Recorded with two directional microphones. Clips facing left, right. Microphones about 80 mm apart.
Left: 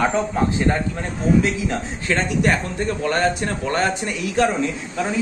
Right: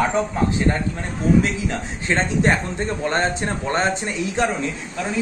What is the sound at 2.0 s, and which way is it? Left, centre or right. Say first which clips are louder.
A man's voice: right 1 dB; right.